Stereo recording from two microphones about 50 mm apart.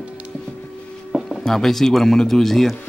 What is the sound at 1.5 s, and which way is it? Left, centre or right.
Speech, centre.